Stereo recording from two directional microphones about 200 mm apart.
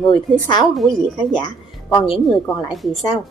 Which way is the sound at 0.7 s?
Centre (ahead or behind).